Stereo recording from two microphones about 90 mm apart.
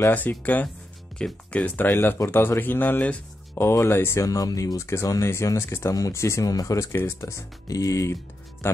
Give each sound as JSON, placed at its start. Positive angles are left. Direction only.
{"t": 0.1, "sound": "speech", "side_deg": 20}
{"t": 2.0, "sound": "speech", "side_deg": 30}